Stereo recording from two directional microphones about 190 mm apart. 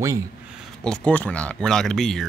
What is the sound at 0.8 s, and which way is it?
Speech, 5° left (ahead or behind).